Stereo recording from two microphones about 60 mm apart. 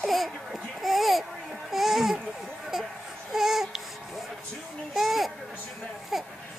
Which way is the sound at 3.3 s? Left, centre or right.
Centre.